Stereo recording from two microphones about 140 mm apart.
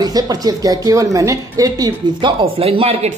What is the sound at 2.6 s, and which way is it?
Speech, 45° right (ahead or behind).